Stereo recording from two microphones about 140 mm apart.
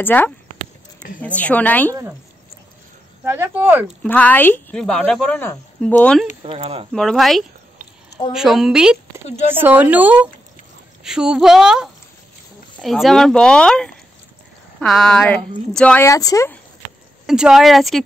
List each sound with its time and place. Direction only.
0.0 s speech: 10° left (ahead or behind)
3.3 s a woman's voice: 15° right (ahead or behind)
3.8 s speech: 10° left (ahead or behind)
6.4 s speech: 45° right (ahead or behind)
6.9 s a woman's voice: centre (ahead or behind)
16.1 s speech: 25° left (ahead or behind)
17.3 s speech: 5° right (ahead or behind)